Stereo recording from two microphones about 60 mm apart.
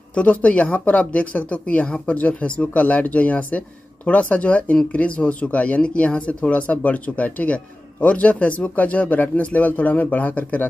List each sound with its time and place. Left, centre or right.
0.1 s speech: left